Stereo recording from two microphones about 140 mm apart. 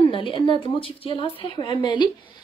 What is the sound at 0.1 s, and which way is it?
Speech, 40° left (ahead or behind).